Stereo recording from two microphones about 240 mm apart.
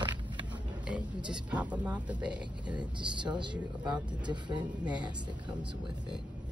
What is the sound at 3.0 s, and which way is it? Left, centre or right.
Speech, centre.